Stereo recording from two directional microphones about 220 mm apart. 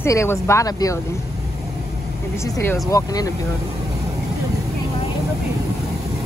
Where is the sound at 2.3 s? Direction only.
10° left (ahead or behind).